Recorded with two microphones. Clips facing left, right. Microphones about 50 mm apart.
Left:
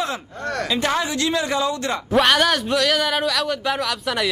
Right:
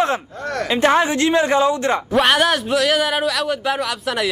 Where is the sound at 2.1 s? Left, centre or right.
Centre.